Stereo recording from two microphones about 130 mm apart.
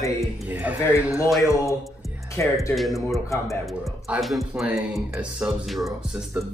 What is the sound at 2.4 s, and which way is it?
Speech, 20° left (ahead or behind).